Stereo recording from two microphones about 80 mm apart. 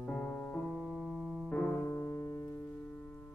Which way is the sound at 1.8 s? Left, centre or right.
Left.